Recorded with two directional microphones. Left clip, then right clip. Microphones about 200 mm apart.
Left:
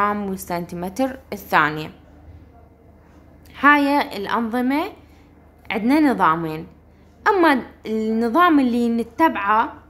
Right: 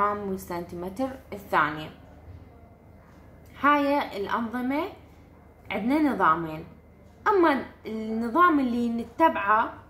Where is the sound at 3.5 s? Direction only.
45° left (ahead or behind).